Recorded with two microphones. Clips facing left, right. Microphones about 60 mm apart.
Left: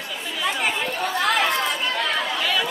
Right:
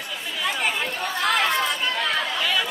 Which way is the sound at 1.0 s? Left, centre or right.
Centre.